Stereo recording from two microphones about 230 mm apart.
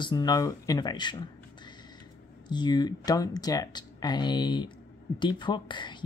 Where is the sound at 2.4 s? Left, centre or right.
Centre.